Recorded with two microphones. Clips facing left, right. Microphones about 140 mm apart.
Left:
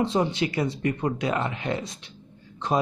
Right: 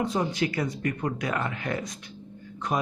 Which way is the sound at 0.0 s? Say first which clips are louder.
Left 3 dB; 25° left (ahead or behind).